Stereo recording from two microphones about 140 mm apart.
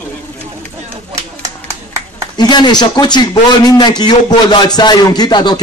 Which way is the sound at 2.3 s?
30° left (ahead or behind).